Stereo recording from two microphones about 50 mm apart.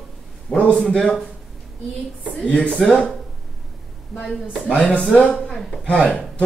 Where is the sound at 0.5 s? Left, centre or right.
Left.